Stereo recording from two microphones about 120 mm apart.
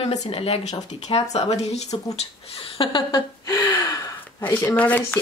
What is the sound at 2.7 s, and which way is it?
Speech, 40° left (ahead or behind).